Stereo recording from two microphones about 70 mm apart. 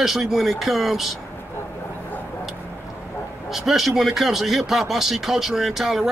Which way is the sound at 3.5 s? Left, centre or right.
Centre.